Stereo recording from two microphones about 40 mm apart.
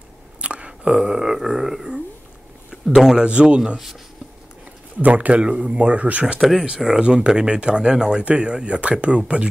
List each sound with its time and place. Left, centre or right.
0.4 s a sound: right
0.9 s a sound: centre
3.2 s speech: right
5.0 s speech: right
6.4 s speech: centre
7.0 s speech: right